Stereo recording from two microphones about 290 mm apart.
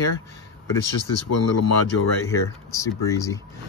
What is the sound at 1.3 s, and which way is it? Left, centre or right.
Speech, left.